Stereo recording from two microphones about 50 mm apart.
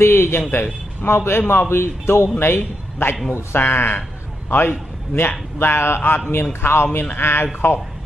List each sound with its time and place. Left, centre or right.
0.0 s a man's voice: left